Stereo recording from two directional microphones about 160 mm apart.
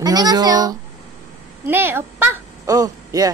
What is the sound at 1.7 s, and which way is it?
Speech, 15° right (ahead or behind).